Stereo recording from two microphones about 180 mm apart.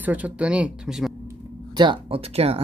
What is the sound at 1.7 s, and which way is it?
Speech, 25° right (ahead or behind).